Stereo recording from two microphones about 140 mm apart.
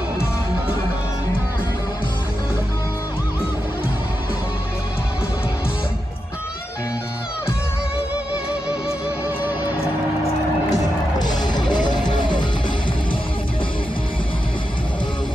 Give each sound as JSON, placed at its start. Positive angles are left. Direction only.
{"t": 10.7, "sound": "music", "side_deg": 30}